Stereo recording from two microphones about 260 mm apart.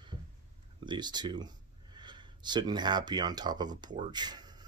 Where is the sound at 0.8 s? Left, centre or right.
Centre.